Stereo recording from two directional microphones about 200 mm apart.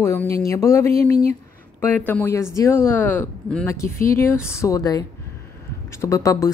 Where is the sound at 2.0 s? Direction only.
10° left (ahead or behind).